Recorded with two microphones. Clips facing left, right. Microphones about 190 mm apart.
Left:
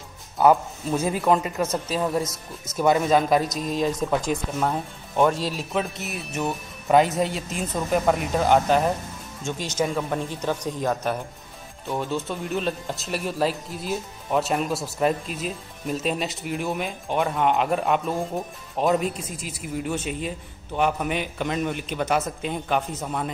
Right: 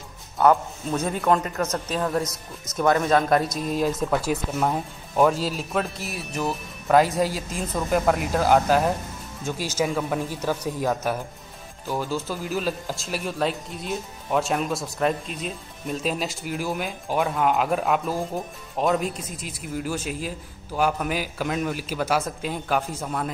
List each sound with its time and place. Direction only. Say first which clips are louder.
0.4 s speech: left 1 dB; 5° left (ahead or behind)